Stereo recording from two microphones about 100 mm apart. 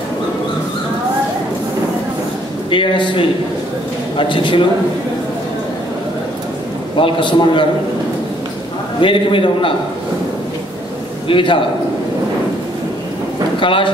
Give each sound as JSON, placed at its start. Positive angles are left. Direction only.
{"t": 2.7, "sound": "a man's voice", "side_deg": 55}
{"t": 7.0, "sound": "a man's voice", "side_deg": 55}
{"t": 9.0, "sound": "a man's voice", "side_deg": 60}
{"t": 11.2, "sound": "a man's voice", "side_deg": 55}
{"t": 13.6, "sound": "speech", "side_deg": 60}